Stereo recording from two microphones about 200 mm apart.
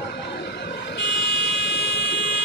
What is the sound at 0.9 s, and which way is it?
Vehicle, 60° left (ahead or behind).